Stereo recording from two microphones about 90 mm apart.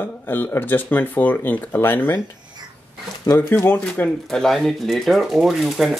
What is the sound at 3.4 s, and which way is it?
Speech, 25° left (ahead or behind).